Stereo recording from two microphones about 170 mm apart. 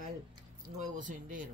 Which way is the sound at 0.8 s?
50° right (ahead or behind).